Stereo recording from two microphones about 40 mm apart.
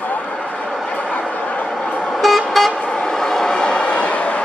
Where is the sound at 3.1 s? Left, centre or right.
Centre; by 4.3 s left.